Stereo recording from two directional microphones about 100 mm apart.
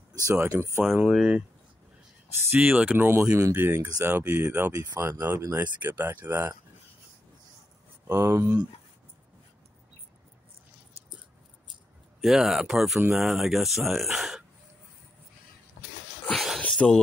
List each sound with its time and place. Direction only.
0.2 s speech: 30° right (ahead or behind)
1.1 s speech: 10° right (ahead or behind)
2.6 s speech: 15° right (ahead or behind)
3.1 s speech: 30° right (ahead or behind)
8.1 s speech: 25° right (ahead or behind)
12.2 s speech: 5° right (ahead or behind)
16.3 s a sound: centre (ahead or behind)